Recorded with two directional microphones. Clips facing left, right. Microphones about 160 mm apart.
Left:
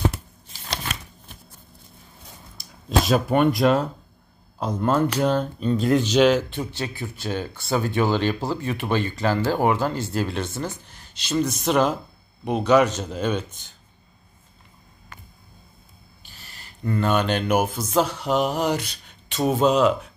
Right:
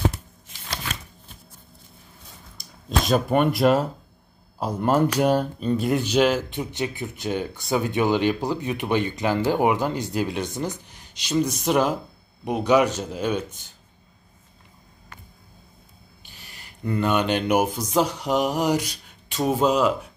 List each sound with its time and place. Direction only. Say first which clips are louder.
3.1 s speech: even; centre (ahead or behind)
6.5 s speech: right 1 dB; 15° right (ahead or behind)
16.3 s speech: left 2 dB; 15° right (ahead or behind)